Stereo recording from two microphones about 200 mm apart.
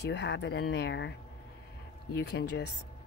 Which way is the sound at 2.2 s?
55° left (ahead or behind).